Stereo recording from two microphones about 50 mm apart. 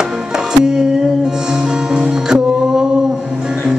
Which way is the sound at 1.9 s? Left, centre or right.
Centre.